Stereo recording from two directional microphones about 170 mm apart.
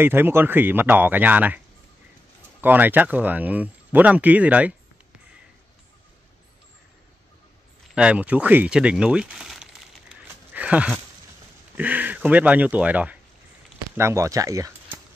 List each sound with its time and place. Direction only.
0.0 s speech: 15° right (ahead or behind)
2.6 s speech: 10° right (ahead or behind)
7.9 s speech: 5° right (ahead or behind)
10.2 s a sound: 10° right (ahead or behind)
11.7 s speech: 10° right (ahead or behind)